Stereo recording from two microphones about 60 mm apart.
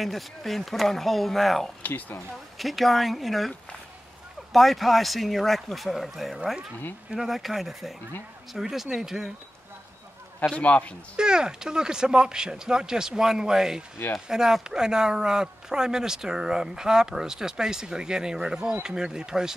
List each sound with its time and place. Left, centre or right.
0.0 s speech: centre
1.8 s a man's voice: left
2.6 s speech: centre
10.5 s a man's voice: left
11.1 s speech: centre